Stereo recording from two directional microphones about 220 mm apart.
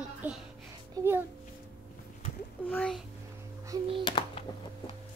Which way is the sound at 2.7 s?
5° left (ahead or behind).